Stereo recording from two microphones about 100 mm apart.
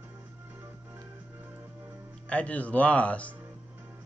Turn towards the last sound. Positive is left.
turn(degrees=15)  # may be behind; listen again after turning